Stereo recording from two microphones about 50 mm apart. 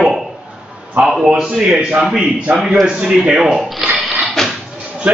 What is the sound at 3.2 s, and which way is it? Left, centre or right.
Speech, centre.